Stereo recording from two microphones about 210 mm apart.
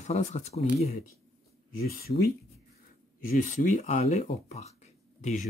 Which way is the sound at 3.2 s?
40° left (ahead or behind).